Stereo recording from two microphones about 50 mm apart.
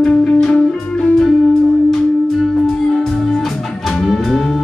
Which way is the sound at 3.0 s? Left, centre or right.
Centre.